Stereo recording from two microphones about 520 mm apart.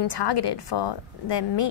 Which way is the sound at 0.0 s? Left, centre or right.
Left.